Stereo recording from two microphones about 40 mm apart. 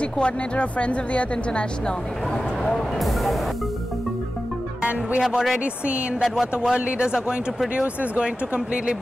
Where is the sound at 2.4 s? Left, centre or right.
Centre.